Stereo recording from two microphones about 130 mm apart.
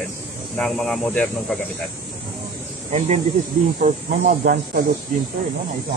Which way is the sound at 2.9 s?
55° right (ahead or behind).